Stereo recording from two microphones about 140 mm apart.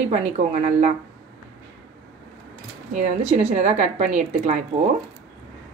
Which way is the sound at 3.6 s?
60° right (ahead or behind).